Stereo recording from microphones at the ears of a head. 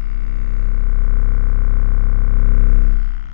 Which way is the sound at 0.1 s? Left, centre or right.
Left.